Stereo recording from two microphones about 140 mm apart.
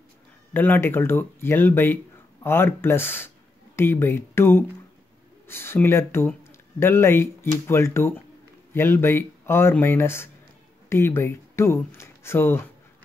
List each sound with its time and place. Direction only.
0.5 s speech: 15° left (ahead or behind)